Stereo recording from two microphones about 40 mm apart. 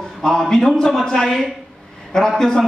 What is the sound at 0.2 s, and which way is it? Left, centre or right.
A man's voice, centre.